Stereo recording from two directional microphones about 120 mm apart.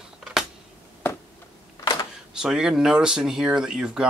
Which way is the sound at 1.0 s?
20° left (ahead or behind).